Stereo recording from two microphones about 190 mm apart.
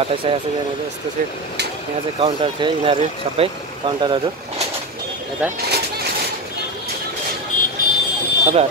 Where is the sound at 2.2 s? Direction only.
30° right (ahead or behind).